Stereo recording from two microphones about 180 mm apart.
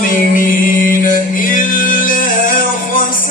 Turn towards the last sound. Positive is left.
turn(degrees=50)  # may be behind; listen again after turning